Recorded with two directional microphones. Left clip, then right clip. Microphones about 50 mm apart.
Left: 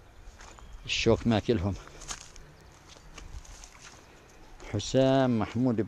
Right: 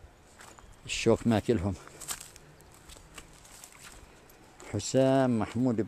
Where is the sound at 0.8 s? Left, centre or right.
Right.